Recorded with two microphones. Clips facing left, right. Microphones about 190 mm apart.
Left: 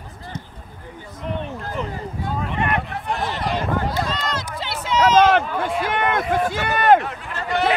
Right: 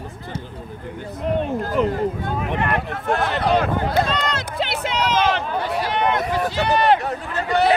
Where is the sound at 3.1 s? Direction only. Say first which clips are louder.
Right 6 dB; 65° right (ahead or behind).